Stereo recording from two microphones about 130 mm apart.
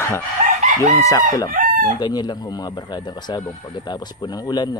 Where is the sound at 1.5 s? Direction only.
90° right.